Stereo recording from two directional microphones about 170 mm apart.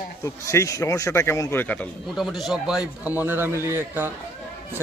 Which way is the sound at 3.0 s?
10° right (ahead or behind).